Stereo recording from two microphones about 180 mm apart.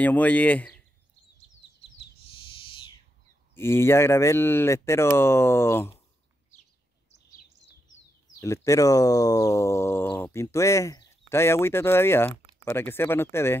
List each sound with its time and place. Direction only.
0.0 s speech: 10° left (ahead or behind)
3.5 s speech: 15° left (ahead or behind)
8.4 s speech: 15° left (ahead or behind)